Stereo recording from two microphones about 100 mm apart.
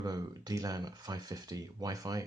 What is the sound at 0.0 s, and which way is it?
Speech, 40° right (ahead or behind).